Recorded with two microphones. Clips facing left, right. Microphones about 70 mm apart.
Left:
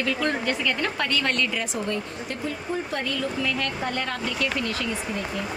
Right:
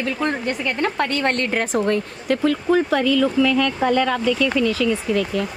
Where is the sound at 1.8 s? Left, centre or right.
Right.